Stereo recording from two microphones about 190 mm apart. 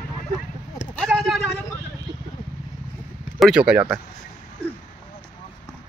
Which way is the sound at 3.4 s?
5° right (ahead or behind).